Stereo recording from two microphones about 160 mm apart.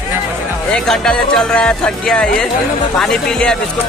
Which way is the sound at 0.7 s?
5° left (ahead or behind).